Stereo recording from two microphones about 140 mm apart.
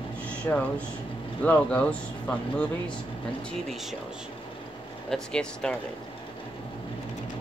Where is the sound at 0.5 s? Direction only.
15° left (ahead or behind).